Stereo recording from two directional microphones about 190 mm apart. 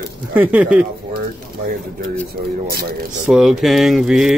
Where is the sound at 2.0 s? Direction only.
50° right (ahead or behind).